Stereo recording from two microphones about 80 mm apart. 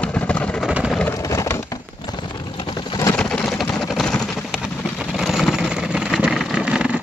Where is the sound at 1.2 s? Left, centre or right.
Left.